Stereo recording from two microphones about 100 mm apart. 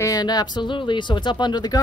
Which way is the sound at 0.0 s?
40° left (ahead or behind).